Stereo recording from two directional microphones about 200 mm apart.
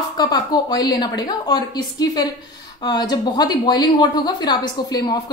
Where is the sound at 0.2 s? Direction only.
20° left (ahead or behind).